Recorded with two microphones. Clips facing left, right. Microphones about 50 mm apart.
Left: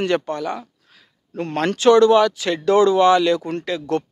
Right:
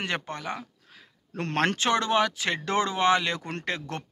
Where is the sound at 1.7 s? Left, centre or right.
Right.